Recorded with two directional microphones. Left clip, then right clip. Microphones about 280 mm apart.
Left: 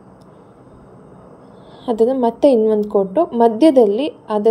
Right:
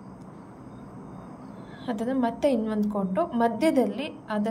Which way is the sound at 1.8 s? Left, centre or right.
Centre.